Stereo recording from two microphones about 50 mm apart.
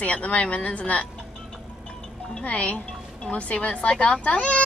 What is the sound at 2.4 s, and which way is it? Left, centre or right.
A woman's voice, left.